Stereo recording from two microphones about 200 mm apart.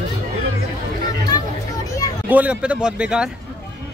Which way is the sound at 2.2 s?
5° right (ahead or behind).